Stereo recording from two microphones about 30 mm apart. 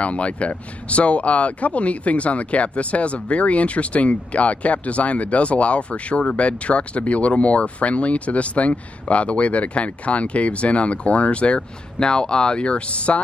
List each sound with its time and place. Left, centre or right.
0.0 s speech: left
12.0 s speech: left